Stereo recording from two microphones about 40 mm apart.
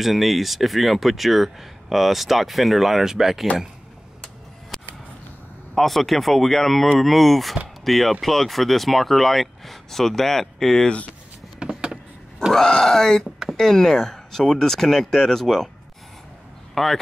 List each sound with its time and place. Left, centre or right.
0.0 s speech: centre
5.8 s speech: centre
11.6 s vehicle: right
12.5 s speech: centre
16.7 s speech: centre